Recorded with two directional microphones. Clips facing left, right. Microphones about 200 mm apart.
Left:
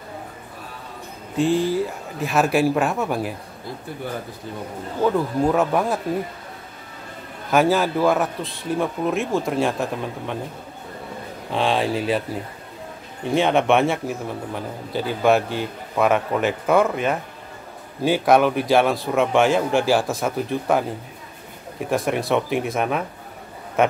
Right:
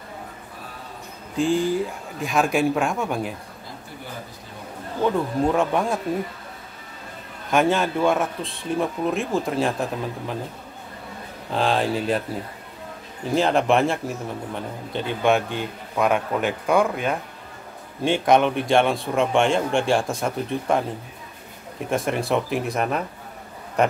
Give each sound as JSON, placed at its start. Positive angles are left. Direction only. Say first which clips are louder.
{"t": 1.3, "sound": "a man's voice", "louder": "left 1 dB", "side_deg": 0}
{"t": 5.0, "sound": "a man's voice", "louder": "left 2 dB", "side_deg": 0}
{"t": 7.5, "sound": "a man's voice", "louder": "left 2 dB", "side_deg": 0}
{"t": 11.5, "sound": "a man's voice", "louder": "left 1 dB", "side_deg": 0}